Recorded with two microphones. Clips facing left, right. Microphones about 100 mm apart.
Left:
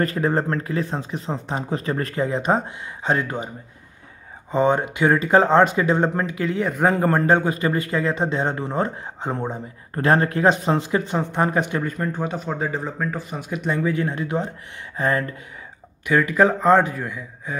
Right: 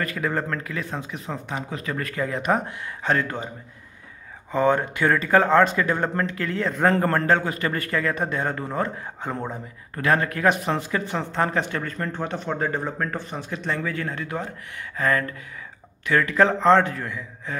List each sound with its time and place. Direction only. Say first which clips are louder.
0.0 s speech: left 5 dB; 30° left (ahead or behind)
4.5 s speech: left 1 dB; 20° left (ahead or behind)
9.9 s speech: left 4 dB; 30° left (ahead or behind)
16.1 s speech: left 2 dB; 15° left (ahead or behind)